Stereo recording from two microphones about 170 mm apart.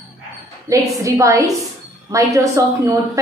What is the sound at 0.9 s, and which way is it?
A woman's voice, 20° right (ahead or behind).